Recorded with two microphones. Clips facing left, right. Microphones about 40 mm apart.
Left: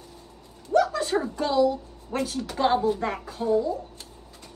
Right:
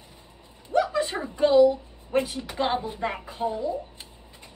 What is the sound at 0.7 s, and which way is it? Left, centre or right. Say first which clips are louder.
A woman's voice: left 2 dB; right.